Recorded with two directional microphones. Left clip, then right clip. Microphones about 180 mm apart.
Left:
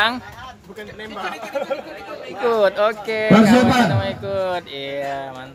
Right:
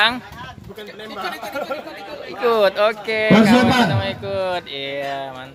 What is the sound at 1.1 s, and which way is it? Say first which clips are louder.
Speech: left 1 dB; 65° right (ahead or behind).